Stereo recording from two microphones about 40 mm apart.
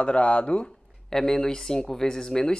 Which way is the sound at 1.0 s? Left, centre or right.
Centre.